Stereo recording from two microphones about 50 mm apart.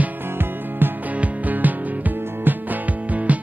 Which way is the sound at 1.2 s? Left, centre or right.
Right.